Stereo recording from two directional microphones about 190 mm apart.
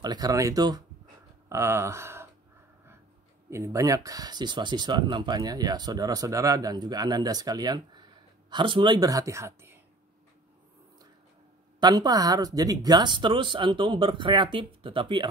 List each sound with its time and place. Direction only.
0.0 s speech: 20° right (ahead or behind)
3.4 s speech: 15° right (ahead or behind)
11.8 s speech: 20° right (ahead or behind)